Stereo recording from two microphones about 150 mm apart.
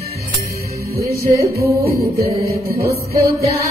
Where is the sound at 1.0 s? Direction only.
20° right (ahead or behind).